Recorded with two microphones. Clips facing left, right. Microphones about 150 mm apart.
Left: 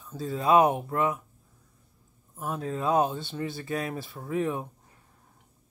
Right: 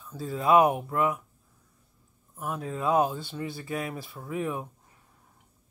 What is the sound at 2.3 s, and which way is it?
Speech, 30° left (ahead or behind).